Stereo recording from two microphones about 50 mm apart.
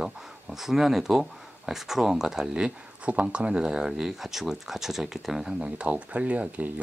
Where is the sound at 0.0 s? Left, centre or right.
Centre.